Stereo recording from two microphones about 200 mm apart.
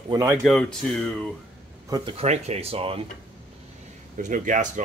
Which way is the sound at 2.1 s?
35° right (ahead or behind).